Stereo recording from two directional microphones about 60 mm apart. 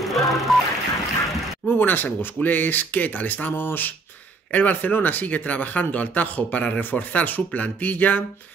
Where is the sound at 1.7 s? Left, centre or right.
Left.